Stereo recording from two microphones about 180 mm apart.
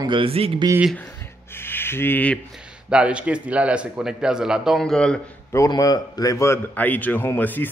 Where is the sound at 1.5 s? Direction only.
10° left (ahead or behind).